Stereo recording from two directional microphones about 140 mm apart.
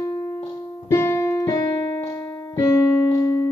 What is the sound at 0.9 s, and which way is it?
Keyboard, 20° left (ahead or behind).